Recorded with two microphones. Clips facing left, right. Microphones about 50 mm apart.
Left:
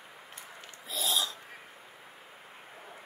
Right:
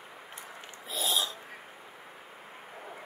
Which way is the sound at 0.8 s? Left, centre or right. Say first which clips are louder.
Right 1 dB; right.